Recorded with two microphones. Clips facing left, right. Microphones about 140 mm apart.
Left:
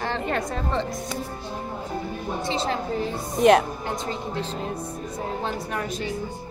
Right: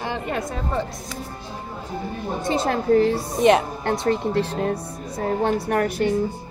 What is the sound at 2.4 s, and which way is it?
Speech, 55° right (ahead or behind).